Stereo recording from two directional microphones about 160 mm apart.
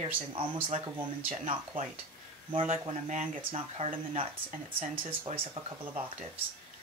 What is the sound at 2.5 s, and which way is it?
Speech, 40° right (ahead or behind).